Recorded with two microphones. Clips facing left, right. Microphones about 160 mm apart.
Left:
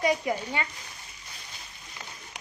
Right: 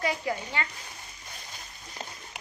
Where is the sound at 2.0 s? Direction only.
30° right (ahead or behind).